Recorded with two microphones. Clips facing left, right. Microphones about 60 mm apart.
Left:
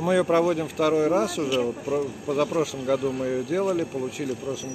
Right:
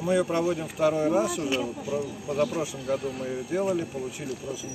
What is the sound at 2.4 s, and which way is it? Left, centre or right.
Speech, left.